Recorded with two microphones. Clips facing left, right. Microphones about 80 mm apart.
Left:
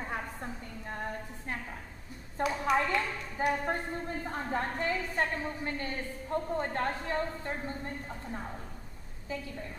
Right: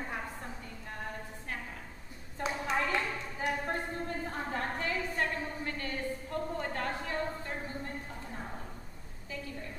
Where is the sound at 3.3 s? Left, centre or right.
Left.